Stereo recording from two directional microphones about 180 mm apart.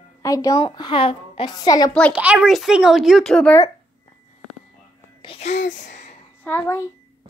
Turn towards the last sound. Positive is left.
turn(degrees=10)  # may be behind; listen again after turning